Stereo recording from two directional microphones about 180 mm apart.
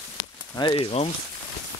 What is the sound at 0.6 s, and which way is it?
Speech, 25° left (ahead or behind).